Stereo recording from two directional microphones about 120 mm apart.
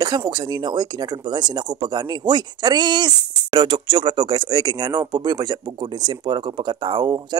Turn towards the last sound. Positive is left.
turn(degrees=-40)  # may be behind; listen again after turning